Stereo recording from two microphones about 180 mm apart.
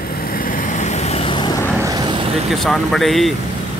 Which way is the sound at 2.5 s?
Centre (ahead or behind).